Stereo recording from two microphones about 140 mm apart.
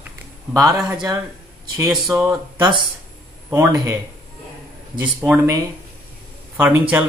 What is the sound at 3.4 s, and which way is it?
Speech, 20° right (ahead or behind).